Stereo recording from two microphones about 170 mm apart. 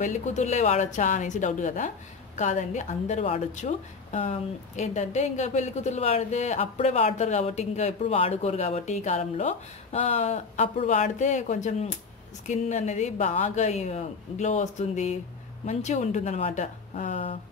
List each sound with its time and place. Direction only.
0.0 s a woman's voice: 45° left (ahead or behind)